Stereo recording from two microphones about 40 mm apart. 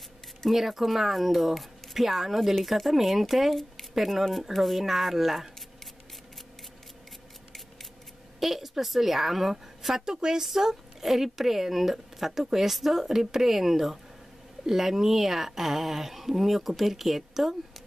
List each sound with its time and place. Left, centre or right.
0.5 s speech: centre
8.4 s a woman's voice: centre